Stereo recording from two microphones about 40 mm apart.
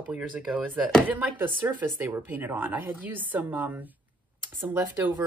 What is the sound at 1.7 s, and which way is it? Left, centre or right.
A woman's voice, right.